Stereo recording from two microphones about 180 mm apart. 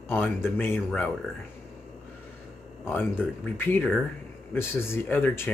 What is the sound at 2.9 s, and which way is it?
Speech, 10° left (ahead or behind).